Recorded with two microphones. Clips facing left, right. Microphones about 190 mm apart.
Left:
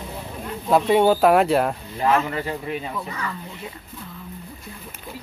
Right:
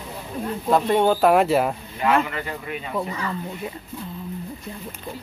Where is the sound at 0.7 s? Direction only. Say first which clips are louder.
Left 2 dB; 5° left (ahead or behind).